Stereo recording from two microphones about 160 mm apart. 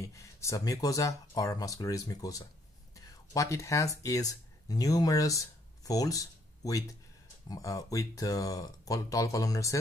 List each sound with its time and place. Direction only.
0.0 s speech: 20° left (ahead or behind)